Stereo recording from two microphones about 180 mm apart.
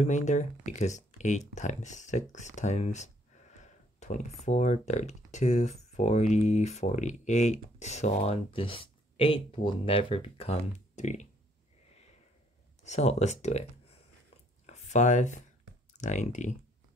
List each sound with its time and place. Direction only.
0.0 s speech: 40° left (ahead or behind)
12.8 s speech: 40° left (ahead or behind)
14.7 s speech: 40° left (ahead or behind)